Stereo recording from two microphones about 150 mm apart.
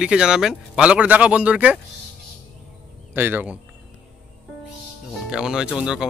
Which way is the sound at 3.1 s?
15° right (ahead or behind).